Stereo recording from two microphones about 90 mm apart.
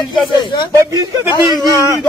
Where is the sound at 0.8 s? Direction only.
40° right (ahead or behind).